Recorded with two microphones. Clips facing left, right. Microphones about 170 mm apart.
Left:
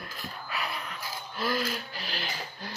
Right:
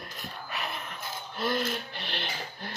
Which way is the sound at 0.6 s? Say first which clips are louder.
Left 1 dB; 45° right (ahead or behind).